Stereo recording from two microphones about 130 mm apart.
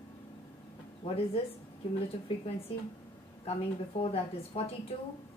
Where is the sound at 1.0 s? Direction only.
50° left (ahead or behind).